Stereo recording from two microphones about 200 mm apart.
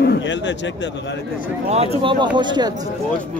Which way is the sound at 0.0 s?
60° left (ahead or behind).